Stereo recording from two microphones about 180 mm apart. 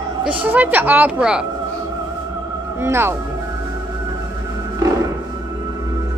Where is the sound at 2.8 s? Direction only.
15° right (ahead or behind).